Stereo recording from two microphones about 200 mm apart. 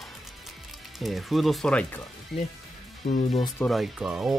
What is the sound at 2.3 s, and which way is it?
Speech, 50° left (ahead or behind).